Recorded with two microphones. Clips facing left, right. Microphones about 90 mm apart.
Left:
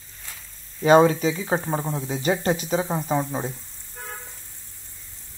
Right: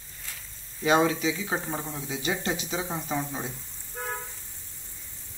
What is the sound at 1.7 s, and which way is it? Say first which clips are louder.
Speech: left 7 dB; 70° left (ahead or behind).